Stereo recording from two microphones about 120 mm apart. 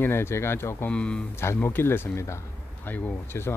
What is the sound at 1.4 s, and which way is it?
Speech, 20° left (ahead or behind).